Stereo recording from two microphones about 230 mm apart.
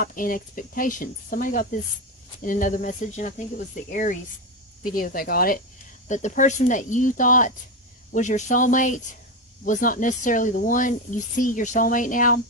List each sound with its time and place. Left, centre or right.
0.0 s speech: left